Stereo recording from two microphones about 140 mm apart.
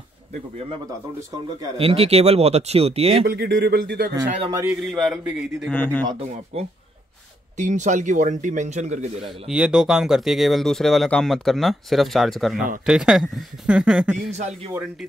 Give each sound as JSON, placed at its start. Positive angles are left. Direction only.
{"t": 1.8, "sound": "speech", "side_deg": -45}
{"t": 3.5, "sound": "speech", "side_deg": -90}
{"t": 4.5, "sound": "a man's voice", "side_deg": -25}
{"t": 4.8, "sound": "speech", "side_deg": 0}
{"t": 5.7, "sound": "speech", "side_deg": 10}
{"t": 6.5, "sound": "speech", "side_deg": -45}
{"t": 7.5, "sound": "speech", "side_deg": -60}
{"t": 9.2, "sound": "speech", "side_deg": -5}
{"t": 14.3, "sound": "speech", "side_deg": -55}